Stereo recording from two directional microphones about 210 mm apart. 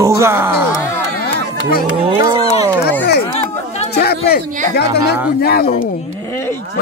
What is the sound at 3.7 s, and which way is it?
Chatter, 30° left (ahead or behind).